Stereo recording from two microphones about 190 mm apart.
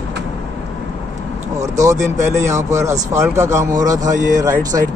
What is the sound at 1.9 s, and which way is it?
Speech, 40° right (ahead or behind).